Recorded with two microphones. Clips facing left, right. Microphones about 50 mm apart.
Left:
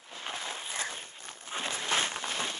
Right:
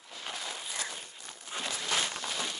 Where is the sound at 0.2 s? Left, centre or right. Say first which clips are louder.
Left 2 dB; left.